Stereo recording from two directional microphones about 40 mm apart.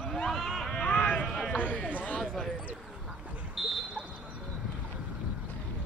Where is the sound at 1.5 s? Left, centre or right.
Left.